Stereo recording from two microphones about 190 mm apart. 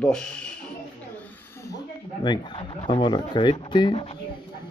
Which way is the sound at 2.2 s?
25° left (ahead or behind).